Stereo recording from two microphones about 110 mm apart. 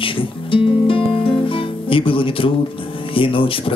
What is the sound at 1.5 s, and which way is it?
Music, 55° left (ahead or behind).